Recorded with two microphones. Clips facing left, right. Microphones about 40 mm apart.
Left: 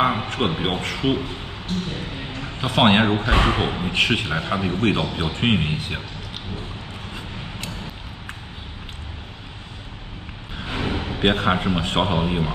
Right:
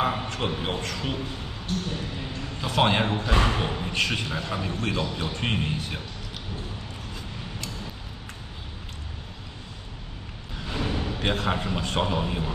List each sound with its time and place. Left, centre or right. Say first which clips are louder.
0.0 s speech: left 6 dB; left
10.6 s speech: left 3 dB; left